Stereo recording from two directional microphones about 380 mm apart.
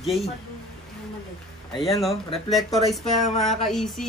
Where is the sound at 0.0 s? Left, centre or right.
Centre.